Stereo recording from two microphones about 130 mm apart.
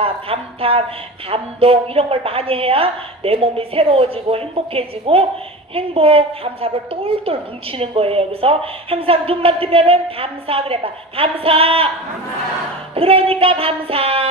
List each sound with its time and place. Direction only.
0.0 s a woman's voice: 45° right (ahead or behind)
12.9 s a woman's voice: 45° right (ahead or behind)